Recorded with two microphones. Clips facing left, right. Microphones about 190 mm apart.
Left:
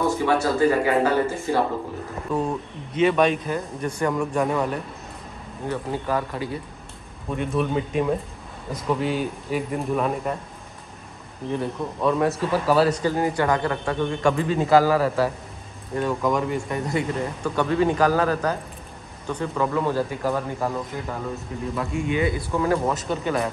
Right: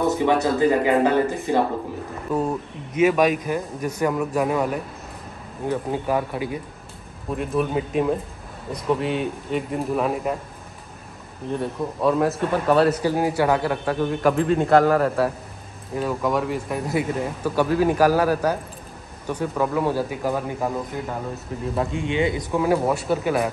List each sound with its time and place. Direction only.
0.0 s speech: 20° right (ahead or behind)
2.3 s speech: 10° right (ahead or behind)
7.3 s a man's voice: centre (ahead or behind)
11.5 s a man's voice: centre (ahead or behind); by 21.1 s 20° right (ahead or behind)
21.7 s speech: 30° right (ahead or behind); by 23.5 s 5° right (ahead or behind)